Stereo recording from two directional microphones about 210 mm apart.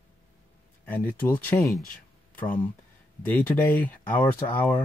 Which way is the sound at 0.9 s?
10° left (ahead or behind).